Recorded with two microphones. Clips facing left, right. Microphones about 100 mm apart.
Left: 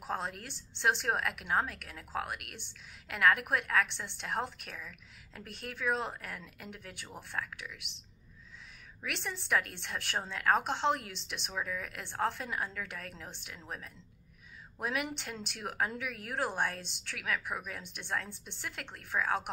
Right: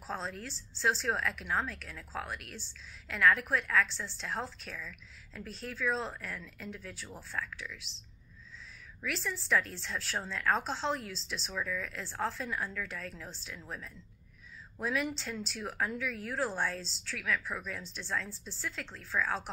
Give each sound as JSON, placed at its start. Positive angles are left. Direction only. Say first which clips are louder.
{"t": 0.0, "sound": "a woman's voice", "louder": "left 1 dB", "side_deg": 15}
{"t": 9.0, "sound": "a woman's voice", "louder": "right 2 dB", "side_deg": 20}